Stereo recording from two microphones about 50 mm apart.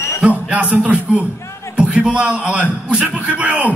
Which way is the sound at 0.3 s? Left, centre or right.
Right.